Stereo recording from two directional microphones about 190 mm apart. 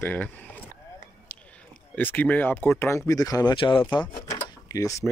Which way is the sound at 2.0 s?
10° left (ahead or behind).